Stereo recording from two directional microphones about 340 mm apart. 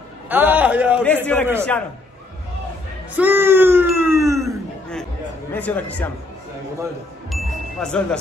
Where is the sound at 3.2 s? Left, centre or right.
Centre.